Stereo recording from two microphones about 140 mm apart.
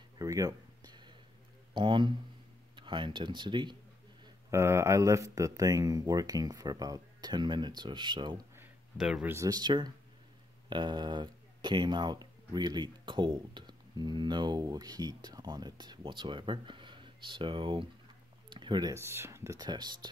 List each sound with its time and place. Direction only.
0.2 s a sound: 25° right (ahead or behind)
1.7 s speech: 35° right (ahead or behind)
4.5 s speech: 20° right (ahead or behind)
8.9 s speech: 5° right (ahead or behind)
9.3 s speech: 25° right (ahead or behind)
18.9 s speech: 20° right (ahead or behind)
19.6 s speech: 30° right (ahead or behind)